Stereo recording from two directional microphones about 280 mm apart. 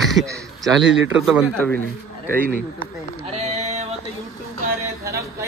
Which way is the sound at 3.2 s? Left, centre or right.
Right.